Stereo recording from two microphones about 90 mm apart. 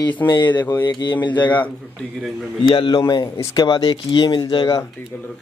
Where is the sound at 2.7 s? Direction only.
70° left (ahead or behind).